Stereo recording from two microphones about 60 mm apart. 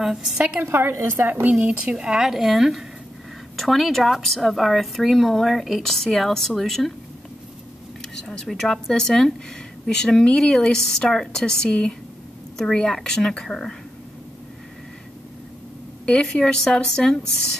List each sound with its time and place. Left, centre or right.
0.0 s a woman's voice: centre
0.6 s a woman's voice: right; by 6.9 s centre
8.0 s speech: centre
16.1 s speech: centre